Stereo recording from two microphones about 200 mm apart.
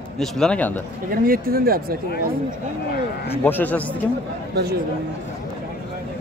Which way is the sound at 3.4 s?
10° left (ahead or behind).